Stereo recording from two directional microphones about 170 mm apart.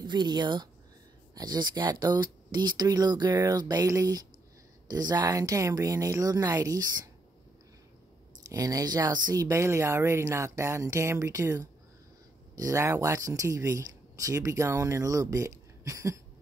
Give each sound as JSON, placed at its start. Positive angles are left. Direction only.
{"t": 0.0, "sound": "speech", "side_deg": -25}
{"t": 8.5, "sound": "speech", "side_deg": -20}